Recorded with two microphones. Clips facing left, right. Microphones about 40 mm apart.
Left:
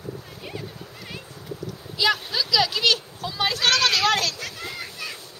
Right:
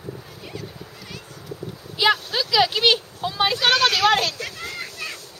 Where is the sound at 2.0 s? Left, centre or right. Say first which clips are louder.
Right 3 dB; right.